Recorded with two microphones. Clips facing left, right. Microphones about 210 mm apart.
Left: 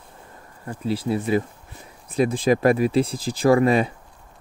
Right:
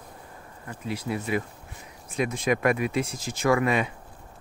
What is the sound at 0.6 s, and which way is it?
Speech, 30° left (ahead or behind).